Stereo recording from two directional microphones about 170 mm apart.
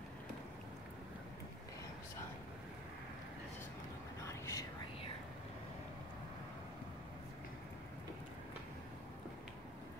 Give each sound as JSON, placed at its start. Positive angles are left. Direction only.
{"t": 4.3, "sound": "whispering", "side_deg": 20}